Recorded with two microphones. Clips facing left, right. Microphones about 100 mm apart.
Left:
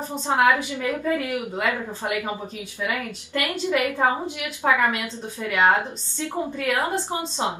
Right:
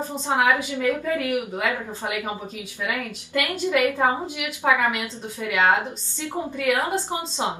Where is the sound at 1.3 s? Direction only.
15° right (ahead or behind).